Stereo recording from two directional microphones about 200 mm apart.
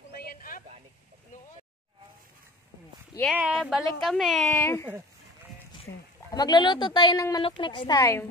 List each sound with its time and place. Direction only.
0.2 s a sound: 50° left (ahead or behind)
3.3 s a woman's voice: 5° right (ahead or behind); by 4.9 s 10° left (ahead or behind)
6.3 s speech: 20° left (ahead or behind)